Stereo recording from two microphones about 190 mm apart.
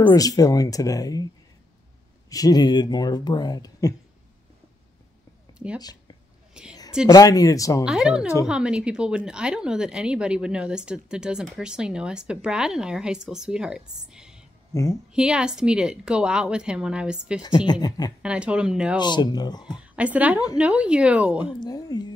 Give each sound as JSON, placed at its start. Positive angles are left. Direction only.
{"t": 0.1, "sound": "speech", "side_deg": 20}
{"t": 5.8, "sound": "speech", "side_deg": 20}
{"t": 6.5, "sound": "a woman's voice", "side_deg": -5}
{"t": 7.1, "sound": "speech", "side_deg": 20}
{"t": 7.8, "sound": "speech", "side_deg": -5}
{"t": 14.7, "sound": "a woman's voice", "side_deg": 15}
{"t": 15.1, "sound": "speech", "side_deg": -5}
{"t": 17.4, "sound": "speech", "side_deg": 20}
{"t": 18.2, "sound": "speech", "side_deg": -5}
{"t": 18.9, "sound": "speech", "side_deg": 25}
{"t": 19.8, "sound": "a woman's voice", "side_deg": -5}
{"t": 21.5, "sound": "speech", "side_deg": 20}